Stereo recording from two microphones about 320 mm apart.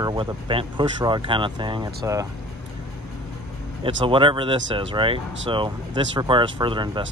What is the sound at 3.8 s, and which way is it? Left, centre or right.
Speech, centre.